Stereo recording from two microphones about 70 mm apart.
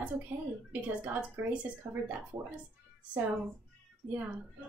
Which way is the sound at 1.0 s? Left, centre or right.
Right.